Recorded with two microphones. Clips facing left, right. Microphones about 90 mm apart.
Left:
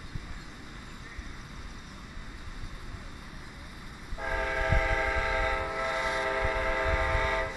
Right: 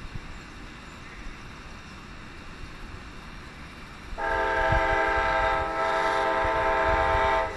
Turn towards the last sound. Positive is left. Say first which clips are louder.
# right 7 dB
turn(degrees=-55)  # may be behind; listen again after turning